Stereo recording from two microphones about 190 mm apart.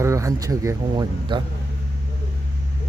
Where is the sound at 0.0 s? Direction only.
15° right (ahead or behind).